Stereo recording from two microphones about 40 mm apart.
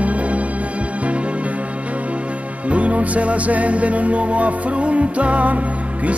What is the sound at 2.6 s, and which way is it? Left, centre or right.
Music, right.